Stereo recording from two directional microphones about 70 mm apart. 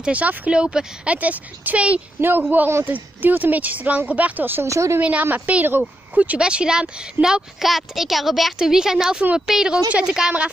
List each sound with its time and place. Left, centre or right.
0.0 s speech: right
4.6 s a woman's voice: right
5.2 s speech: right